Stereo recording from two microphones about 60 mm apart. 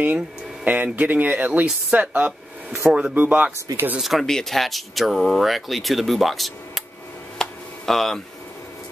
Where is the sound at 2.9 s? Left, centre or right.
Centre.